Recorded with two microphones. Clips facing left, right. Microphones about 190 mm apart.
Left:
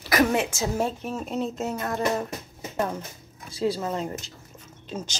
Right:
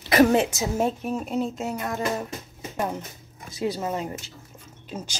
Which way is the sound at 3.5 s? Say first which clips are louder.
Left 1 dB; 20° right (ahead or behind).